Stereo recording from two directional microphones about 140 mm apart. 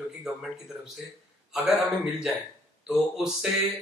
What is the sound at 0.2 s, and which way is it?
Speech, 5° right (ahead or behind).